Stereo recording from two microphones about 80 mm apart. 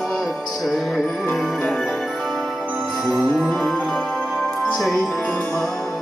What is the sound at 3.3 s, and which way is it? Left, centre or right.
Music, centre.